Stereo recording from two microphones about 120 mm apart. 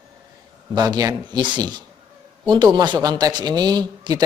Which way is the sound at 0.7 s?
35° right (ahead or behind).